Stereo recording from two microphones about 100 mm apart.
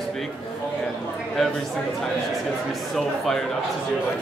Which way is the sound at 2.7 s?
5° left (ahead or behind).